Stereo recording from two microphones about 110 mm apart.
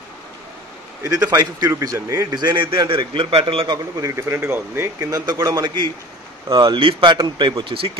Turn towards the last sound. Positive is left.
turn(degrees=-50)  # may be behind; listen again after turning